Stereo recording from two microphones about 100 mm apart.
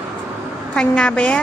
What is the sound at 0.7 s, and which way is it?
Speech, 10° left (ahead or behind).